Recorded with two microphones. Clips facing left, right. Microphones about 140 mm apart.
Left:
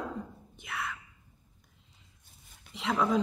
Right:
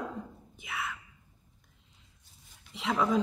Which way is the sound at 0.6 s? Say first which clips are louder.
Even; centre (ahead or behind).